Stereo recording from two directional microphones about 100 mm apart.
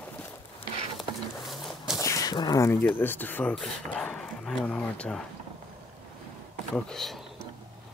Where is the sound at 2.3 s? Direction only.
40° left (ahead or behind).